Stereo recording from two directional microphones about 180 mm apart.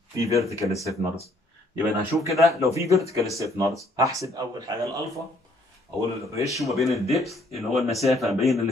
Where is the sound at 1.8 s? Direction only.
Centre (ahead or behind).